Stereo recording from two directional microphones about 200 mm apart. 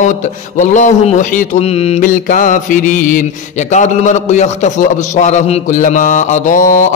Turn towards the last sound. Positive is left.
turn(degrees=40)  # may be behind; listen again after turning